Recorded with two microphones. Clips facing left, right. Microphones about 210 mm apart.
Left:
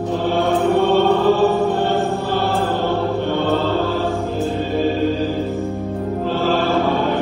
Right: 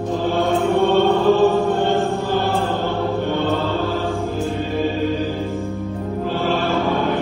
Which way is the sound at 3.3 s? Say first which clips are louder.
Left 3 dB; 15° left (ahead or behind).